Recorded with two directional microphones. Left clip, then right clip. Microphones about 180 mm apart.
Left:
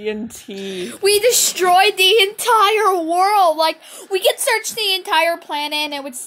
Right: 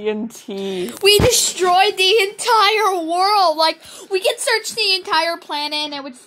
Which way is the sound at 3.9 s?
15° left (ahead or behind).